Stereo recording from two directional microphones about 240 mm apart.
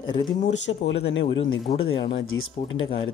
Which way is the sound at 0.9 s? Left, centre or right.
Left.